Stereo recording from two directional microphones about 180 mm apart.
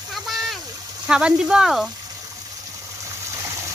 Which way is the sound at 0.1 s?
Centre (ahead or behind).